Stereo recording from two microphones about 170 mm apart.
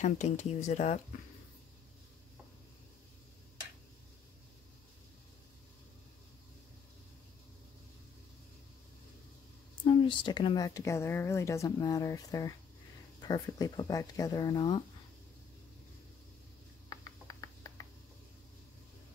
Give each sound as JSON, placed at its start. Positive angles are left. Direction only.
{"t": 0.0, "sound": "speech", "side_deg": 45}
{"t": 9.8, "sound": "a woman's voice", "side_deg": 30}
{"t": 16.9, "sound": "a sound", "side_deg": 20}